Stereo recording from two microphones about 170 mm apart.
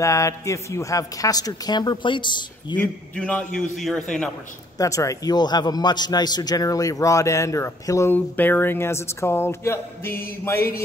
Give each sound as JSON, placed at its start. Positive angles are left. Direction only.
{"t": 0.0, "sound": "a man's voice", "side_deg": 20}
{"t": 2.8, "sound": "a man's voice", "side_deg": 10}
{"t": 4.7, "sound": "a man's voice", "side_deg": 20}